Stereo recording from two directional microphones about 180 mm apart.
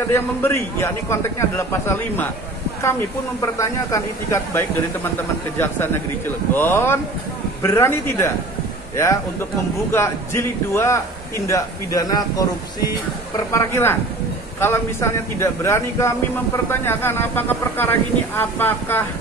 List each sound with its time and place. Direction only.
0.1 s a man's voice: 10° left (ahead or behind)
9.8 s a man's voice: 15° left (ahead or behind)
13.5 s a man's voice: 15° left (ahead or behind)